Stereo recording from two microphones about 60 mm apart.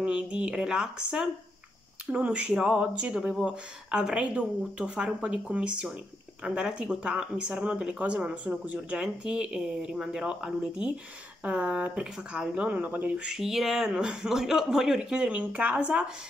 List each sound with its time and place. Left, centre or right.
0.0 s speech: right
13.3 s speech: centre
15.0 s speech: centre